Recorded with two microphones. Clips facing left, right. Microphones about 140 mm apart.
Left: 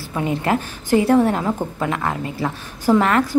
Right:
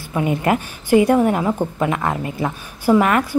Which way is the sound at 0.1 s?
15° right (ahead or behind).